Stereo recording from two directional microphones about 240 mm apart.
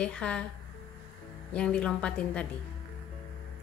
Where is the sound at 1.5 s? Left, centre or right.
Centre.